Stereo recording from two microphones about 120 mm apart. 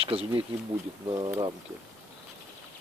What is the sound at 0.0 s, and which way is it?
Speech, 55° right (ahead or behind).